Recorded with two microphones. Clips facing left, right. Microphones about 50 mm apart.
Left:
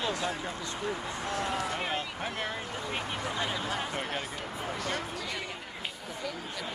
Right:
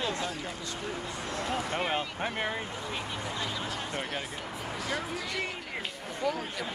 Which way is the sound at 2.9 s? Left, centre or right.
Left.